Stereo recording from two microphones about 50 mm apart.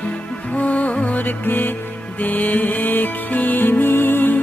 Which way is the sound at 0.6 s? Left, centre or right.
Left.